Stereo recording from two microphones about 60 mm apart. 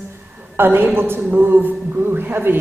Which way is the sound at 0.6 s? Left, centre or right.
Right.